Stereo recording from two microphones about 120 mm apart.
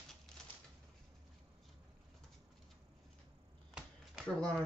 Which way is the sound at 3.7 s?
10° right (ahead or behind).